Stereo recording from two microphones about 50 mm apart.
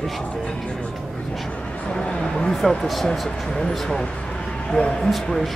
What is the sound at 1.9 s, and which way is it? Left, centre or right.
Speech, centre.